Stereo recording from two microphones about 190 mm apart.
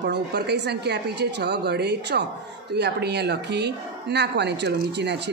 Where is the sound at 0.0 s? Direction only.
60° right (ahead or behind).